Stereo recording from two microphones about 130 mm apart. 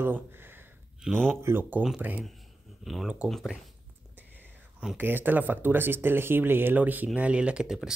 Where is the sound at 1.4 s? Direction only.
15° right (ahead or behind).